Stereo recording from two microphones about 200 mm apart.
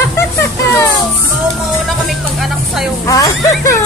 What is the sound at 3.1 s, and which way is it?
Speech, 15° left (ahead or behind).